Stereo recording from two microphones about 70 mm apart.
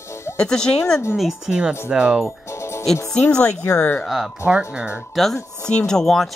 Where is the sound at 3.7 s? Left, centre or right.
Left.